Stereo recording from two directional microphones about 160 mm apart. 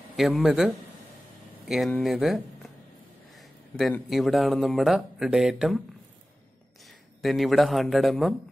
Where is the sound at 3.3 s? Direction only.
Centre (ahead or behind).